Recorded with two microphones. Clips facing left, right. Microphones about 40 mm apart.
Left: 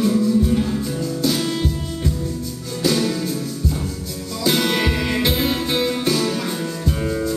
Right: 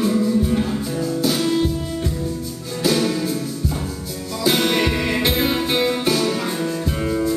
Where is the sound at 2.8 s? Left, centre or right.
Centre.